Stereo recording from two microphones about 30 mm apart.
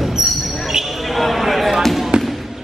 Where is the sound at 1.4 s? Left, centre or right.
Centre.